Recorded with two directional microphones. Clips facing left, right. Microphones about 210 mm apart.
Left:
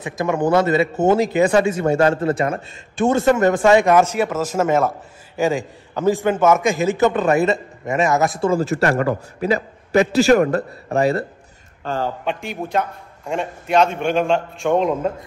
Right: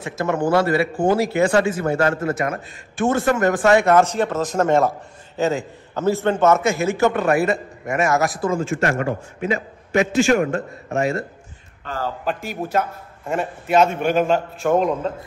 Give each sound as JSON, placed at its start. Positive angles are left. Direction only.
{"t": 0.0, "sound": "a man's voice", "side_deg": 15}
{"t": 5.4, "sound": "a man's voice", "side_deg": 15}
{"t": 12.3, "sound": "a man's voice", "side_deg": 0}